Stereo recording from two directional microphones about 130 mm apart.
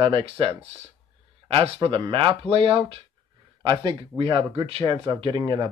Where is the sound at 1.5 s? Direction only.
40° right (ahead or behind).